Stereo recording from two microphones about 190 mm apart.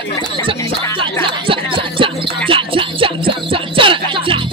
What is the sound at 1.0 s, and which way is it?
Music, 25° right (ahead or behind).